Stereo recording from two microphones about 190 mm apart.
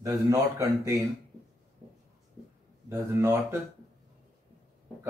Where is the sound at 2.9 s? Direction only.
15° right (ahead or behind).